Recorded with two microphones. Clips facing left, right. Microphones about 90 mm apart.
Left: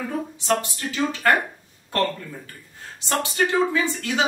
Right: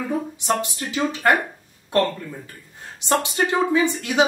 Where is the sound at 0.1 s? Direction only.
15° right (ahead or behind).